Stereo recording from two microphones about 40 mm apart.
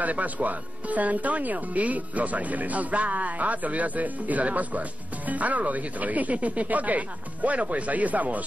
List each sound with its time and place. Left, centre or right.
0.0 s speech: right